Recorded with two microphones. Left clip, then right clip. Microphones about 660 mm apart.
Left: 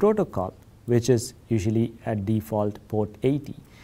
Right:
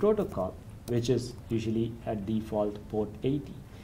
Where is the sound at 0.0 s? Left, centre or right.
Left.